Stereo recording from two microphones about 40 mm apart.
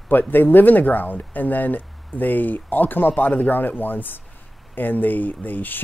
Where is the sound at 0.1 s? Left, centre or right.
Left.